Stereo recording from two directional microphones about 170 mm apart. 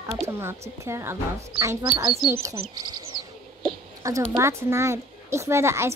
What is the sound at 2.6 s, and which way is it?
A woman's voice, 25° right (ahead or behind).